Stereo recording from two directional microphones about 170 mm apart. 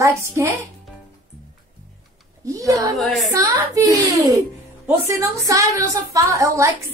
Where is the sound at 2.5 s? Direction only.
20° right (ahead or behind).